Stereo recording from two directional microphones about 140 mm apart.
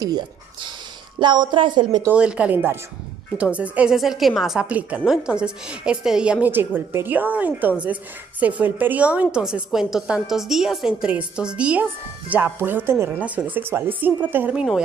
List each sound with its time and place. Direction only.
0.0 s a woman's voice: 30° right (ahead or behind)
2.0 s a woman's voice: 10° right (ahead or behind)